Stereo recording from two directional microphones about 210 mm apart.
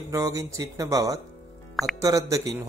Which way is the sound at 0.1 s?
15° right (ahead or behind).